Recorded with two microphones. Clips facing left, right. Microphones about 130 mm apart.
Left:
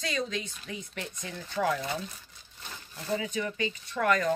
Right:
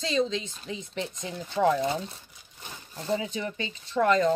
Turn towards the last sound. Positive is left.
turn(degrees=-25)  # may be behind; listen again after turning